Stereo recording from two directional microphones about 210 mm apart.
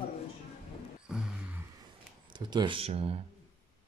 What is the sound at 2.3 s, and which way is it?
Speech, 20° right (ahead or behind).